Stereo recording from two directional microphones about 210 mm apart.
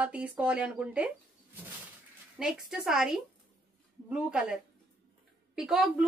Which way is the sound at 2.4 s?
Centre (ahead or behind).